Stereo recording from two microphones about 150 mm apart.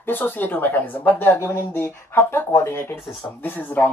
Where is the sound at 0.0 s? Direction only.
10° left (ahead or behind).